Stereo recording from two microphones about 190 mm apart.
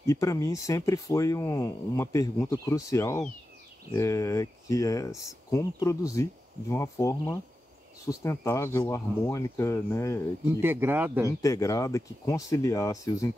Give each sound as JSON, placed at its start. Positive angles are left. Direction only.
{"t": 0.0, "sound": "speech", "side_deg": 15}
{"t": 10.6, "sound": "speech", "side_deg": -10}
{"t": 11.4, "sound": "speech", "side_deg": 15}